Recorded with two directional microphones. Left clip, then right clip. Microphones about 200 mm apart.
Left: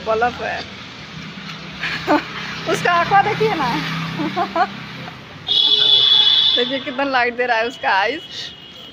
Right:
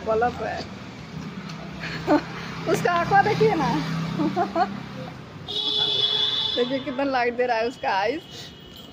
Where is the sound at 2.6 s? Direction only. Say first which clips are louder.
Left 5 dB; 5° left (ahead or behind).